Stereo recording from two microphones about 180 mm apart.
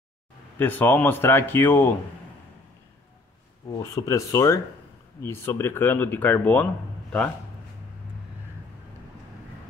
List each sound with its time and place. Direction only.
0.6 s speech: 10° left (ahead or behind)
3.7 s speech: 15° left (ahead or behind)